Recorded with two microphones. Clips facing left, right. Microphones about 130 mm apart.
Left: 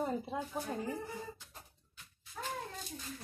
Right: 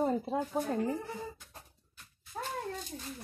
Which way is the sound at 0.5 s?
25° right (ahead or behind).